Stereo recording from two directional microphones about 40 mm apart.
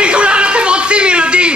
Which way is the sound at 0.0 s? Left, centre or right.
Right.